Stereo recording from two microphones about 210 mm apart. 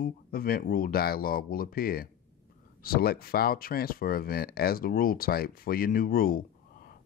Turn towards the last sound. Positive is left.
turn(degrees=45)  # may be behind; listen again after turning